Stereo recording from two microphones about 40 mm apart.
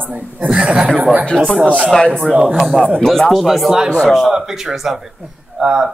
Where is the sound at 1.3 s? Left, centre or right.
Centre.